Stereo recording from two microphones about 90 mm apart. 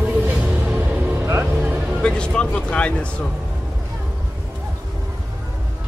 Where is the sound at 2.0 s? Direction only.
10° left (ahead or behind).